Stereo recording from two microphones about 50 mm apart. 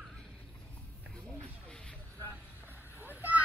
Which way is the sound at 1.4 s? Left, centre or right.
Centre.